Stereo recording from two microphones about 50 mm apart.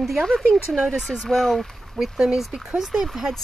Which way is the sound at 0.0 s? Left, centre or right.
Centre.